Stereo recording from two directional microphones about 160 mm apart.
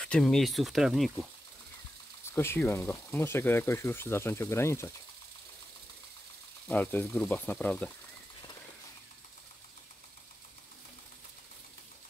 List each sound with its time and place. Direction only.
0.0 s speech: 5° left (ahead or behind)
2.3 s speech: 15° left (ahead or behind)
6.7 s speech: 10° left (ahead or behind)